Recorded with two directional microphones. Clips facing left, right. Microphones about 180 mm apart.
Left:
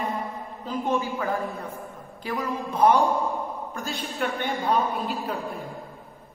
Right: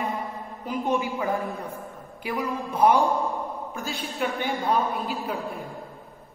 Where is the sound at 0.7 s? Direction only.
15° right (ahead or behind); by 5.6 s centre (ahead or behind).